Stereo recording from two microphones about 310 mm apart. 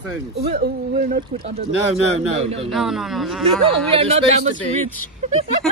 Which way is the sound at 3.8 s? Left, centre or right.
Centre.